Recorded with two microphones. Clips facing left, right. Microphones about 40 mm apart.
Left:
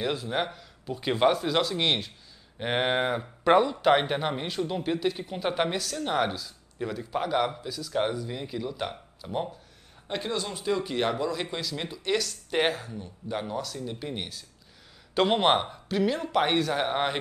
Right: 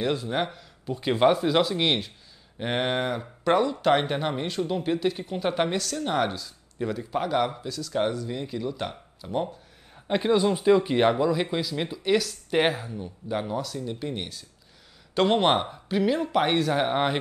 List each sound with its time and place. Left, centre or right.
0.0 s speech: centre
10.0 s speech: centre